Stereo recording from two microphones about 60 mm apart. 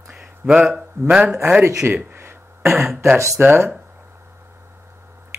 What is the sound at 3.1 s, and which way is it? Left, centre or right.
Speech, right.